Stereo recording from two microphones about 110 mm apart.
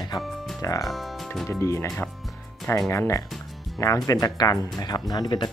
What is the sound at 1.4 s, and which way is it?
Speech, 25° left (ahead or behind).